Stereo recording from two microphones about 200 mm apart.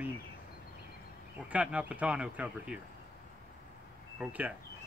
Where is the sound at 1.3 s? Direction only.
5° right (ahead or behind).